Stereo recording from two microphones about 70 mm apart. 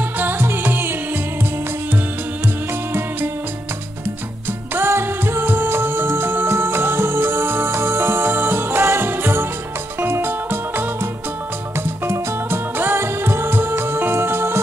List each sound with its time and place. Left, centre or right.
0.2 s music: right
4.7 s music: right